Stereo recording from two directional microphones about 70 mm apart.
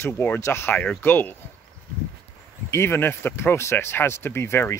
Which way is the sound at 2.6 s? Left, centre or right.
Left.